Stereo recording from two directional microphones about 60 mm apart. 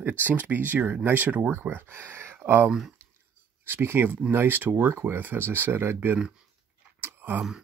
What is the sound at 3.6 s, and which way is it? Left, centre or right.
Speech, right.